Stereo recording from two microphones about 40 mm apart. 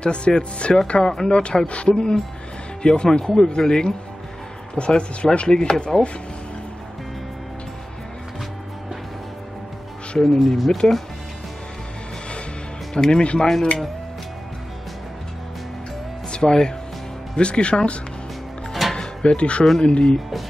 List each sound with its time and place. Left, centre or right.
0.0 s speech: left
10.1 s speech: centre
12.9 s speech: left
16.3 s speech: centre
17.4 s speech: left
18.7 s music: centre
18.9 s music: left
19.8 s speech: left